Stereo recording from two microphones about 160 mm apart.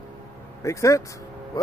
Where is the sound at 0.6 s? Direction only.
20° left (ahead or behind).